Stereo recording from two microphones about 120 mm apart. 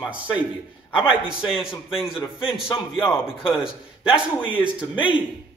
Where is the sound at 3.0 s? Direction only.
20° left (ahead or behind).